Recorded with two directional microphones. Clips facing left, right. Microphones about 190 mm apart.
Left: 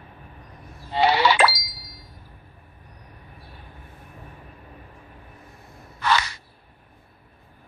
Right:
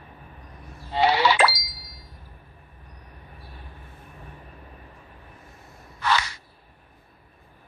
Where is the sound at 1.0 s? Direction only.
70° left (ahead or behind).